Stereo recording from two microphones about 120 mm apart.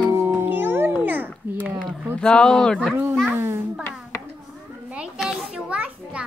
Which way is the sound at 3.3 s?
20° right (ahead or behind).